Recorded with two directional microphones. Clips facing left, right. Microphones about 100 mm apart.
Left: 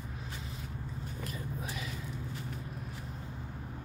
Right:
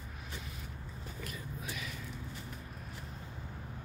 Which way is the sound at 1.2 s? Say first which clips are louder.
Left 3 dB; 30° left (ahead or behind).